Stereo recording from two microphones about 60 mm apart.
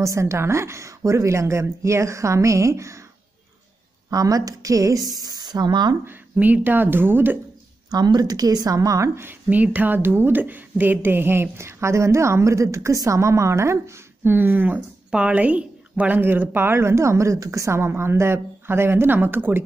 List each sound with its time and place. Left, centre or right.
0.0 s a woman's voice: right
4.1 s a woman's voice: right
5.5 s speech: right
6.3 s speech: right
7.9 s a woman's voice: right
9.1 s speech: right
9.5 s speech: right
11.5 s a woman's voice: right
14.3 s speech: right
15.0 s a woman's voice: centre
16.2 s a woman's voice: right